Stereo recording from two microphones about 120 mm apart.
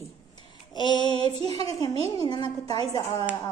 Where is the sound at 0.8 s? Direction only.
40° left (ahead or behind).